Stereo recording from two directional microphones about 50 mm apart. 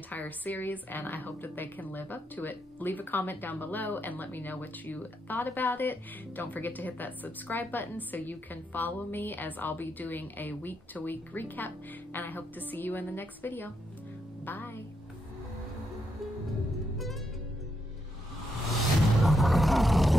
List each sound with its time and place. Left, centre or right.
0.1 s speech: left
18.8 s music: centre